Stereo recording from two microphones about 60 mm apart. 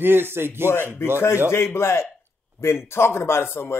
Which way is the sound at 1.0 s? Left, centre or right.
Left.